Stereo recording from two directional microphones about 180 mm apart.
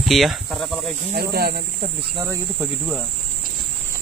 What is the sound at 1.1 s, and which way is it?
Speech, 60° right (ahead or behind).